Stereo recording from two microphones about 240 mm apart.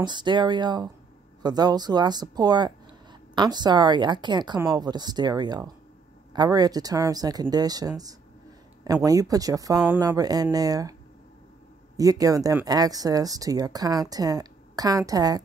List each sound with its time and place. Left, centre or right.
0.0 s speech: centre
12.0 s speech: centre